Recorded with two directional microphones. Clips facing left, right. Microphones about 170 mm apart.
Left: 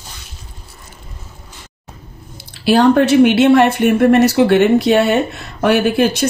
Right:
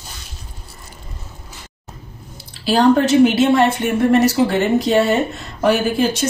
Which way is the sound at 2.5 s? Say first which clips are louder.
Left 2 dB; 65° left (ahead or behind).